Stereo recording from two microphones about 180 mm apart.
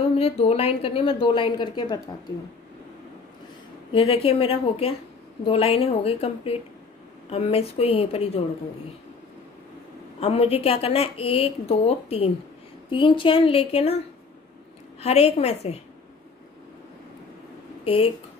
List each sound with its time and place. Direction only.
0.1 s a woman's voice: 35° left (ahead or behind)
3.9 s a woman's voice: 30° left (ahead or behind)
10.2 s a woman's voice: 35° left (ahead or behind)
17.8 s a woman's voice: 30° left (ahead or behind)